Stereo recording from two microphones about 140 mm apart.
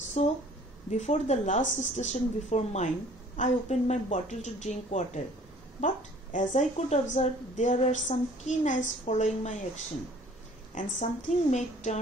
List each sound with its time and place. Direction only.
0.2 s a woman's voice: 50° left (ahead or behind)
10.7 s a woman's voice: 60° left (ahead or behind)